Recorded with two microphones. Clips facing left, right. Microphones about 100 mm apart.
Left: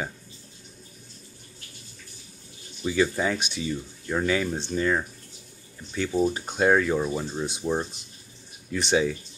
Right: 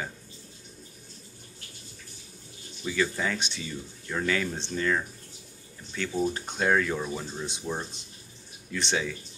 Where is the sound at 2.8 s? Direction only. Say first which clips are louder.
Left 5 dB; 25° left (ahead or behind).